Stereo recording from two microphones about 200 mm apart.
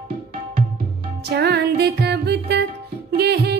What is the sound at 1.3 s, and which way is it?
Music, 55° right (ahead or behind).